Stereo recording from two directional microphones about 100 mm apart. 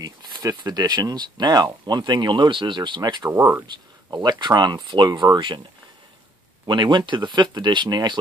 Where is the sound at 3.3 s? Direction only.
20° right (ahead or behind).